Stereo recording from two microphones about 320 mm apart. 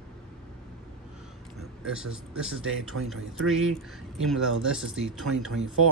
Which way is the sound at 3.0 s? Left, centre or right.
Right.